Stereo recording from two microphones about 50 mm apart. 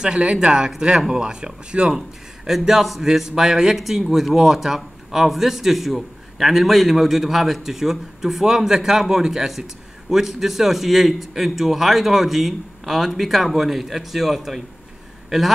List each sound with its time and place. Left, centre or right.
0.0 s a man's voice: centre